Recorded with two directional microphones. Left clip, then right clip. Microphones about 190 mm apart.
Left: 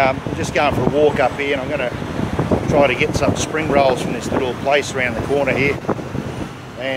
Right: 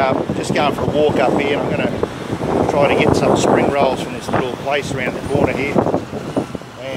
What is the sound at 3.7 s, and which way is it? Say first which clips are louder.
Speech: left 1 dB; 5° left (ahead or behind).